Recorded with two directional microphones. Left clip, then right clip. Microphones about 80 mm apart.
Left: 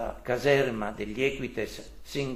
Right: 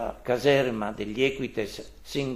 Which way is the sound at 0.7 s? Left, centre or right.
Right.